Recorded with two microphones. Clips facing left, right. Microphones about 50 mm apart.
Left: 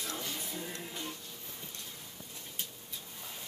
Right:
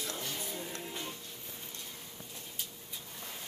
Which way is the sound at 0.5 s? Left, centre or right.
Centre.